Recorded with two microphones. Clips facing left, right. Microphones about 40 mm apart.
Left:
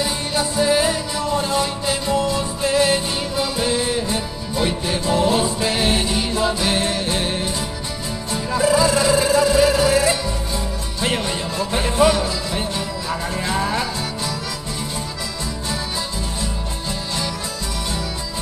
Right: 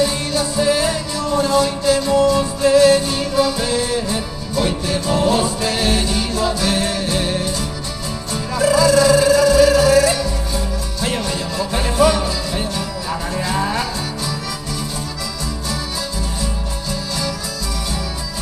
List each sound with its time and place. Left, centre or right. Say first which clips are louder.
0.0 s music: right 3 dB; centre
8.5 s music: right 3 dB; left